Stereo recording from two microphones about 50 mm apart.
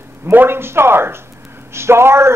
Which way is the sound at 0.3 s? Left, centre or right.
Right.